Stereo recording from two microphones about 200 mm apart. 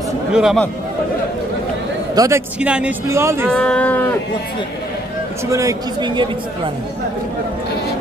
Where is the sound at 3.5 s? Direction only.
5° left (ahead or behind).